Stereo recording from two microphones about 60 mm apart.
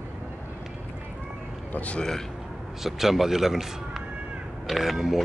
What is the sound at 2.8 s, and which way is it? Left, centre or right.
Speech, centre.